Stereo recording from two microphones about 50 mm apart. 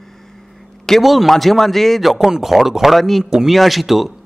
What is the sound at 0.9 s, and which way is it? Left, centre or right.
Speech, centre.